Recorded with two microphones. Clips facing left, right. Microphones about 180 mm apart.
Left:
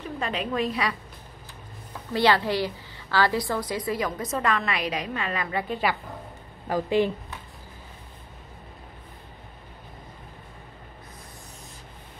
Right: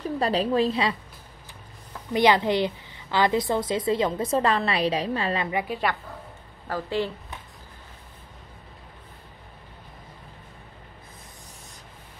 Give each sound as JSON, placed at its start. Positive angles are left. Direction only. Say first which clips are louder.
{"t": 0.0, "sound": "a woman's voice", "louder": "right 6 dB", "side_deg": -35}
{"t": 2.1, "sound": "a woman's voice", "louder": "right 2 dB", "side_deg": -20}
{"t": 5.7, "sound": "a woman's voice", "louder": "left 1 dB", "side_deg": 0}
{"t": 6.7, "sound": "speech", "louder": "left 4 dB", "side_deg": 15}